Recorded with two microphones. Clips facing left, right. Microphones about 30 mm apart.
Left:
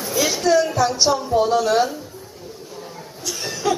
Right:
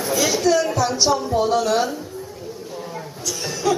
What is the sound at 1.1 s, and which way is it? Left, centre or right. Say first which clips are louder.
Music: left 1 dB; centre.